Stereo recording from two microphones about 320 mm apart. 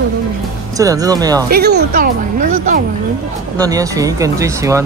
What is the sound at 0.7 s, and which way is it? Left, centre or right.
Speech, centre.